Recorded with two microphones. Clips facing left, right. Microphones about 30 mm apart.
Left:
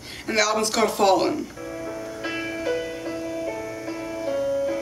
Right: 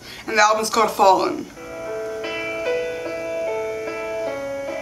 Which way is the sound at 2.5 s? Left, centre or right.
Right.